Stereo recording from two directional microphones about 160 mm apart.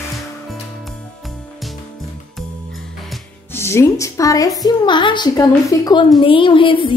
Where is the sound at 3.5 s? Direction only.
15° left (ahead or behind).